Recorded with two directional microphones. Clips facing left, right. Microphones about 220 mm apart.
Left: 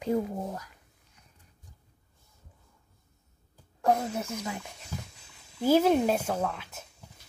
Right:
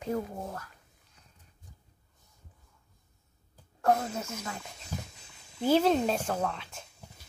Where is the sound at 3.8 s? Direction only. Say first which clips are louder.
Left 1 dB; 15° left (ahead or behind).